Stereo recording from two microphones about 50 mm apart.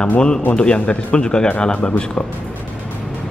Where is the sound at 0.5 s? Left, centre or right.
Centre.